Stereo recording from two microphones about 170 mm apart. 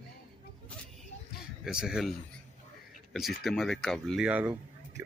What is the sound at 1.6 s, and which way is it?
Speech, 5° right (ahead or behind).